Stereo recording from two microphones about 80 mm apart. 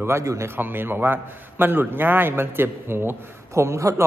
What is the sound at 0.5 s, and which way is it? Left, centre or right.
A man's voice, right.